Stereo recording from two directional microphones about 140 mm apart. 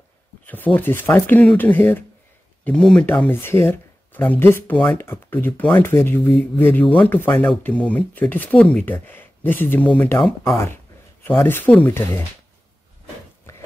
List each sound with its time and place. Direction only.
0.5 s speech: 10° left (ahead or behind)
10.2 s speech: centre (ahead or behind)
11.2 s speech: 15° left (ahead or behind)